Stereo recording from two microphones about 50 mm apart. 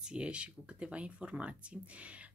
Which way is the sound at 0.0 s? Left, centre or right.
Centre.